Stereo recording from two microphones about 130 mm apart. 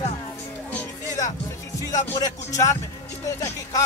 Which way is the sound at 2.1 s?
25° left (ahead or behind).